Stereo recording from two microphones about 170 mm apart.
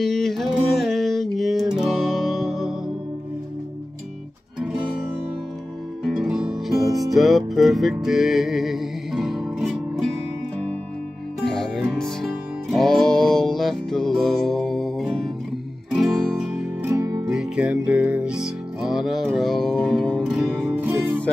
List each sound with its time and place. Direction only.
0.0 s music: centre (ahead or behind)
6.0 s music: 5° right (ahead or behind)
11.4 s music: 5° left (ahead or behind)
16.8 s music: 15° right (ahead or behind)